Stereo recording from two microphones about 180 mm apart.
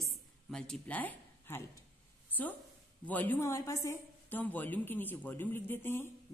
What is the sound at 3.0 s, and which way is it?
A woman's voice, 10° left (ahead or behind).